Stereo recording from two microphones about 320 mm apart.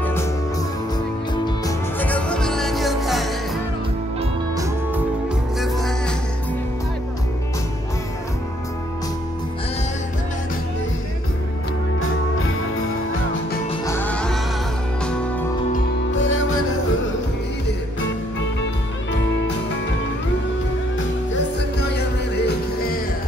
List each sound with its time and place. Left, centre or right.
0.0 s music: centre
2.0 s music: centre
4.2 s music: centre
5.6 s music: centre
13.7 s music: centre
15.7 s music: left